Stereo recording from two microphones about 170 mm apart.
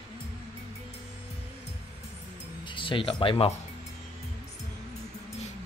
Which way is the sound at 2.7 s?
30° left (ahead or behind).